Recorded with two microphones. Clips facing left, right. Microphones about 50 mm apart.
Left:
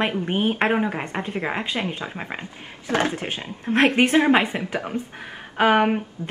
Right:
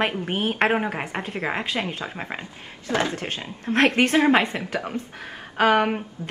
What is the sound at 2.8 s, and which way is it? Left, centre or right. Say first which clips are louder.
Speech: left 2 dB; left.